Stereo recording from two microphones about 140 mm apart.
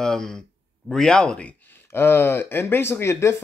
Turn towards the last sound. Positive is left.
turn(degrees=20)  # may be behind; listen again after turning